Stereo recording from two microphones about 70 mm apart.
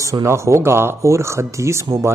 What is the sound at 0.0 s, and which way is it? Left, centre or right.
A man's voice, right.